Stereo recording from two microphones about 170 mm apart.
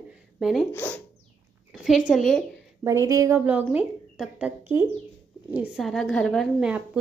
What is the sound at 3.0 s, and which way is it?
Speech, 20° right (ahead or behind).